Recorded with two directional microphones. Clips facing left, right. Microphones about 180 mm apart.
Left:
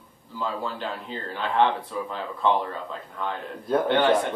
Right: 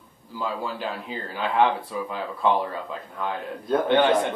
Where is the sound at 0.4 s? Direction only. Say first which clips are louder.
Right 1 dB; 10° right (ahead or behind).